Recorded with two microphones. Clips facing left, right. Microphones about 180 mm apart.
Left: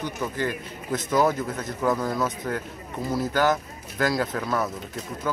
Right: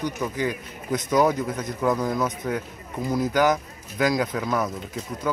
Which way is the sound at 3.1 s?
15° right (ahead or behind).